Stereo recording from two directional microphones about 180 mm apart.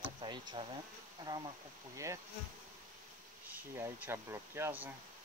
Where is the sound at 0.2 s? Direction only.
25° right (ahead or behind).